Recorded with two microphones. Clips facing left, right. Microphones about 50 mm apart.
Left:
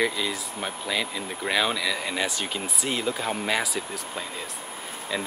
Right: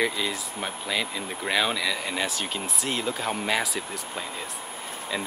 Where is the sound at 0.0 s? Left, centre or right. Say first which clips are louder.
Even; centre.